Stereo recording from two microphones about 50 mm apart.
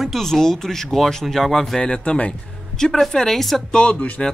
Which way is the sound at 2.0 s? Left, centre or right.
Left.